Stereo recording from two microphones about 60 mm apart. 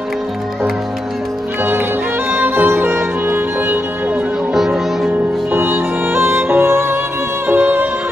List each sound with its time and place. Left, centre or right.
1.6 s music: right
4.6 s music: centre
5.5 s music: right